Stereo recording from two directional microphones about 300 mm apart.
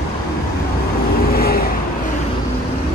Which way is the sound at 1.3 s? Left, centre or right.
Left.